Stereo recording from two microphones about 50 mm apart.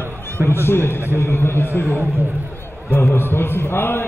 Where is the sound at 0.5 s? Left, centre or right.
Left.